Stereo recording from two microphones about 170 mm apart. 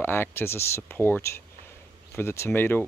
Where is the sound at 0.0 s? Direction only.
15° left (ahead or behind).